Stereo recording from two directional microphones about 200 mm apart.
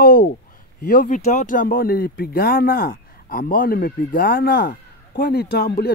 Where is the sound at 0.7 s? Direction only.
45° left (ahead or behind).